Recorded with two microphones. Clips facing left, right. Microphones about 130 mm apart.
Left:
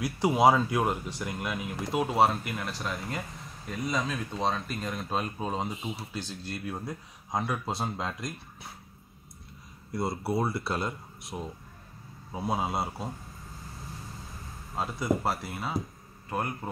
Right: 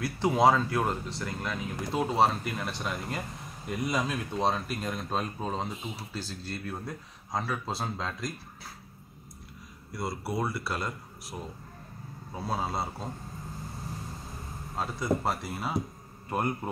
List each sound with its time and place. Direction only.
0.0 s speech: 5° left (ahead or behind)
9.9 s speech: 25° left (ahead or behind)
11.3 s speech: 10° left (ahead or behind)
12.7 s speech: 5° left (ahead or behind)
14.8 s a man's voice: centre (ahead or behind)